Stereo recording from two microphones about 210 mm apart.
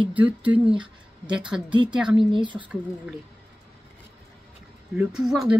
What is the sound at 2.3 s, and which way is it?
Speech, 20° right (ahead or behind).